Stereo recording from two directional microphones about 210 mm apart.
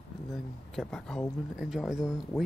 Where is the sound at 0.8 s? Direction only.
5° left (ahead or behind).